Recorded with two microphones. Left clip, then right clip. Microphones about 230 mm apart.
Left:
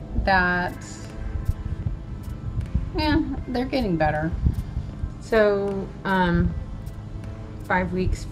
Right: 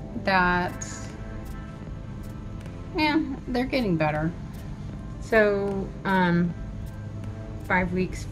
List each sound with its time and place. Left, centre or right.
0.2 s a woman's voice: centre
3.0 s a woman's voice: centre
5.3 s speech: centre
7.6 s speech: centre